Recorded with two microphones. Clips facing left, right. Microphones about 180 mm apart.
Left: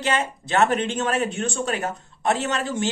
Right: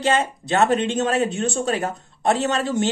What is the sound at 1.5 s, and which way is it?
Speech, 40° right (ahead or behind).